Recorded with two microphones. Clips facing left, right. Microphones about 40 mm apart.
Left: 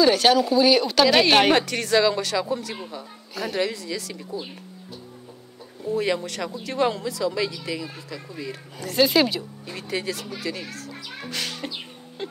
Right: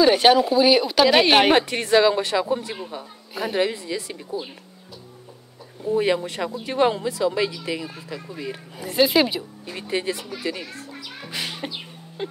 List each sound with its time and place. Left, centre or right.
0.0 s speech: centre
1.7 s speech: right
5.9 s speech: right
9.8 s speech: right
10.9 s a child's voice: centre
11.2 s music: centre
12.2 s speech: centre